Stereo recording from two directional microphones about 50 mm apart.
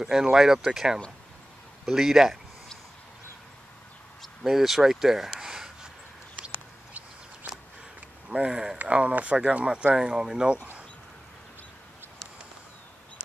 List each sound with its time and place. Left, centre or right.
0.0 s speech: centre
4.5 s speech: centre
6.4 s a sound: right
8.5 s speech: centre
8.7 s speech: right